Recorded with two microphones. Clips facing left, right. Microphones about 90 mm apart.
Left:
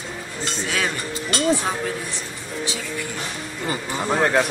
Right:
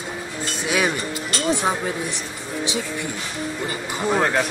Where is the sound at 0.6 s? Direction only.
15° right (ahead or behind).